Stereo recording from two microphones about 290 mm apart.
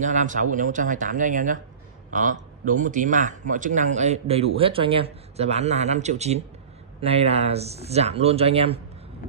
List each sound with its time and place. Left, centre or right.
0.0 s speech: right